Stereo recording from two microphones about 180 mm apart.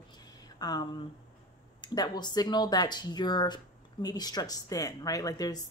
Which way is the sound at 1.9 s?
25° left (ahead or behind).